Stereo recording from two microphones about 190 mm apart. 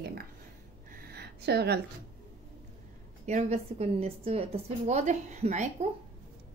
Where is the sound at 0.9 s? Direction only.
55° right (ahead or behind).